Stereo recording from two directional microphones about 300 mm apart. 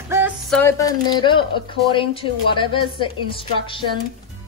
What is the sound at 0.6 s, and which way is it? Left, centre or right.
A woman's voice, centre.